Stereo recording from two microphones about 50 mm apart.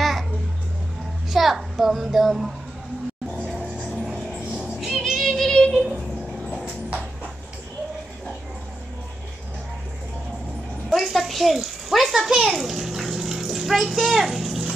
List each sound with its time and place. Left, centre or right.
1.3 s child singing: centre
3.5 s music: right
3.9 s music: centre
4.5 s music: right
4.7 s music: centre
5.3 s child singing: centre
5.9 s a sound: centre
10.9 s a sound: centre
12.5 s bathtub: centre